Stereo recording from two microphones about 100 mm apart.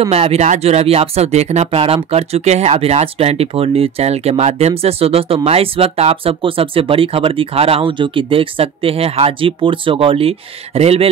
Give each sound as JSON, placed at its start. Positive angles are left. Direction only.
{"t": 0.1, "sound": "speech", "side_deg": -90}
{"t": 2.0, "sound": "speech", "side_deg": -90}